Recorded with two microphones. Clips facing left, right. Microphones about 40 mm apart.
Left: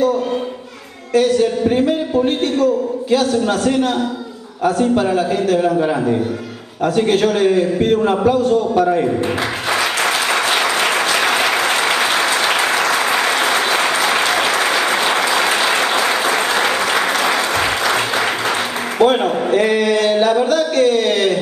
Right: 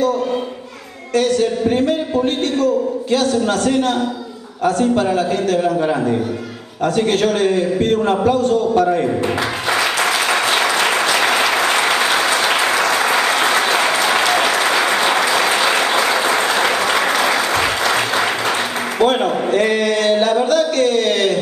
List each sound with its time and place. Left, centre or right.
1.1 s a man's voice: centre
10.3 s applause: centre
18.9 s a sound: centre